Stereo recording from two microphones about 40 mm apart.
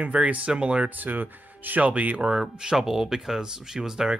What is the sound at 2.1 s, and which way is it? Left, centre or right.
Speech, right.